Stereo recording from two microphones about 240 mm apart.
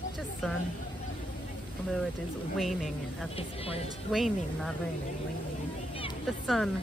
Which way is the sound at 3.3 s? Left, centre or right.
Left.